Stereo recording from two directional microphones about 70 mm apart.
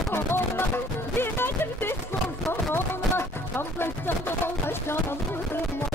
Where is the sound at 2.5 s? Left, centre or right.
Left.